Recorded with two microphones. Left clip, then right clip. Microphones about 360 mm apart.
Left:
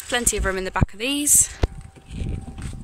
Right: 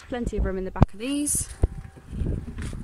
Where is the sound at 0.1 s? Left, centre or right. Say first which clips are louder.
Left 7 dB; left.